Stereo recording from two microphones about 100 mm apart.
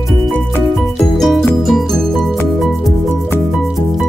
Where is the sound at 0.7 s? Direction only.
Centre (ahead or behind).